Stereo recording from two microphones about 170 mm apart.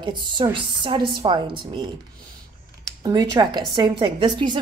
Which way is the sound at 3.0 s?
25° right (ahead or behind).